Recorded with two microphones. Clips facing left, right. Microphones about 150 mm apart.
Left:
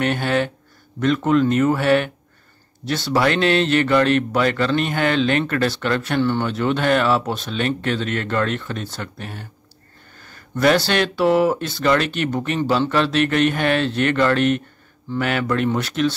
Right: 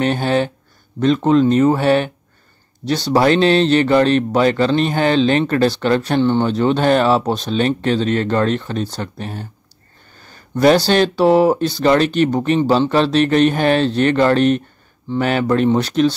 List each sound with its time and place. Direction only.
0.0 s speech: 30° right (ahead or behind)
10.2 s a sound: 35° right (ahead or behind)
10.9 s speech: 35° right (ahead or behind)